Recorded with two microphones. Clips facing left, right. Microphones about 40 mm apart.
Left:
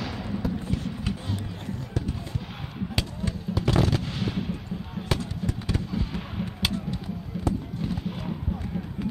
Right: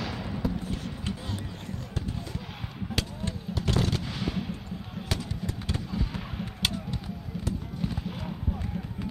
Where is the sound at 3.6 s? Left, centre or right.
Left.